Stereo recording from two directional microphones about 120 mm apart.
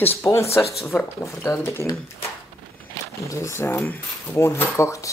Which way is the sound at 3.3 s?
25° left (ahead or behind).